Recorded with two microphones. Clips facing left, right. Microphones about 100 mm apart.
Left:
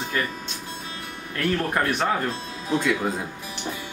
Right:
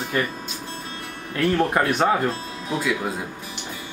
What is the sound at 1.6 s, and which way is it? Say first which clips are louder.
Speech: right 5 dB; 20° right (ahead or behind).